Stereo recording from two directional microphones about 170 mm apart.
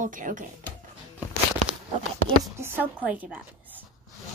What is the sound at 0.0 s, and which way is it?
Speech, 50° right (ahead or behind).